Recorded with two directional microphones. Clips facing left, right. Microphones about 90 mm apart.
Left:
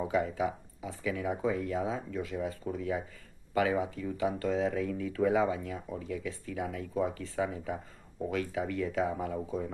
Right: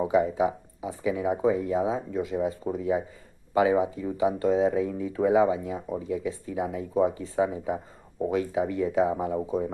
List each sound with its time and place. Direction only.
0.0 s speech: 20° right (ahead or behind)